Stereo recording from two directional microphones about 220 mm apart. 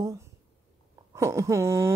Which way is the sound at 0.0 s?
15° right (ahead or behind).